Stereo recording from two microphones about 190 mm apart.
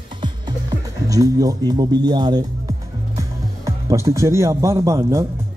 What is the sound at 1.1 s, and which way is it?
Speech, 20° right (ahead or behind).